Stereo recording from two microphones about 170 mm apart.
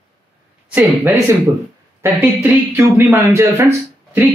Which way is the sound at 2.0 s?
15° right (ahead or behind).